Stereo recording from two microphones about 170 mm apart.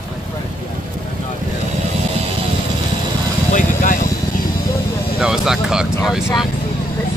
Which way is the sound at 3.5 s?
50° left (ahead or behind).